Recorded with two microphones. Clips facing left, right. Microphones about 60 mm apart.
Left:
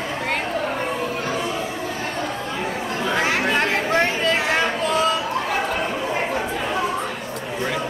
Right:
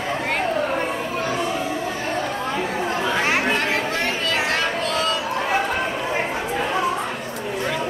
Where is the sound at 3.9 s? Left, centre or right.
Centre.